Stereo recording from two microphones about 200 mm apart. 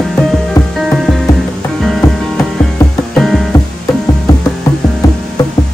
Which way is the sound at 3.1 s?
Centre (ahead or behind).